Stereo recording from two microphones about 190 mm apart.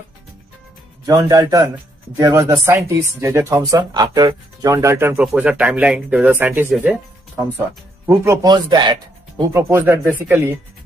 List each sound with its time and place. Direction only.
1.0 s speech: 20° right (ahead or behind)